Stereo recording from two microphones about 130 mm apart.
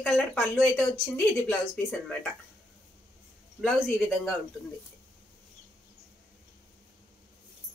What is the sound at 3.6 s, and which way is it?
Speech, 5° right (ahead or behind).